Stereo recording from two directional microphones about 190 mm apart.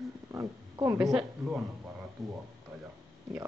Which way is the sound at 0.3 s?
15° right (ahead or behind).